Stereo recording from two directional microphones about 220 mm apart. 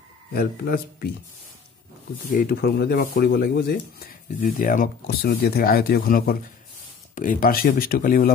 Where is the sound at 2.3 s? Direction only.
40° left (ahead or behind).